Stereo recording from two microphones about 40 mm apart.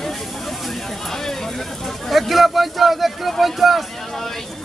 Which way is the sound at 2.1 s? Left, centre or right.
Centre.